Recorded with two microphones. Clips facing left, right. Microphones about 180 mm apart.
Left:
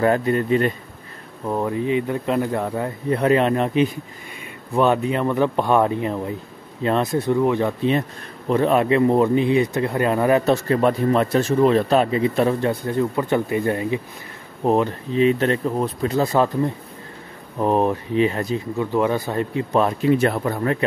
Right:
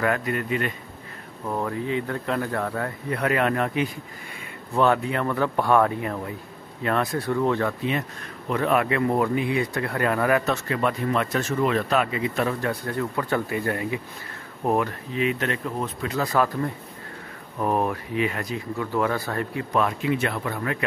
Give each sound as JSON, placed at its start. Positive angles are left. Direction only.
{"t": 0.0, "sound": "speech", "side_deg": 30}
{"t": 1.5, "sound": "speech", "side_deg": 20}
{"t": 8.5, "sound": "speech", "side_deg": 30}